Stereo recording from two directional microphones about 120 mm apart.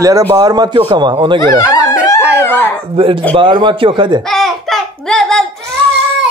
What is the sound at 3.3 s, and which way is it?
Speech, 40° right (ahead or behind).